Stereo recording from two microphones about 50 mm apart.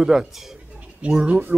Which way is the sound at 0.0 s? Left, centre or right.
Centre.